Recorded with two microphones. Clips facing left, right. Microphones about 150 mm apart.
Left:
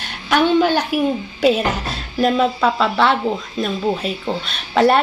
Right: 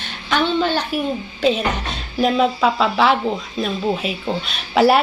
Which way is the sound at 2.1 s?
Centre (ahead or behind).